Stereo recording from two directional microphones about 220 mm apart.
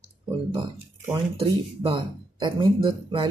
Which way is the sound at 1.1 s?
25° right (ahead or behind).